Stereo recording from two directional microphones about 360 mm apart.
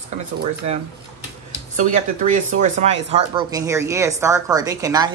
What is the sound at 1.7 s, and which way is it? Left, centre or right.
Speech, right.